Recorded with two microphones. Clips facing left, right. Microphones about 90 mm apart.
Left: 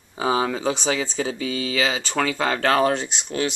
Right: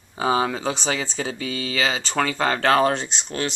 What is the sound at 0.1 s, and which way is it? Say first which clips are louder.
Speech: right 1 dB; 5° left (ahead or behind).